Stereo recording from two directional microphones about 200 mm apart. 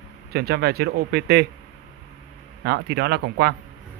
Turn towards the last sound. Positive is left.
turn(degrees=-55)  # may be behind; listen again after turning